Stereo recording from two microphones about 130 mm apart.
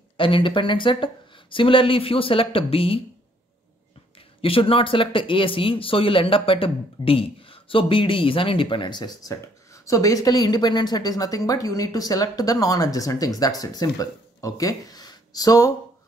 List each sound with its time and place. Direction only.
0.2 s speech: 40° left (ahead or behind)
4.4 s speech: 45° left (ahead or behind); by 15.7 s 30° left (ahead or behind)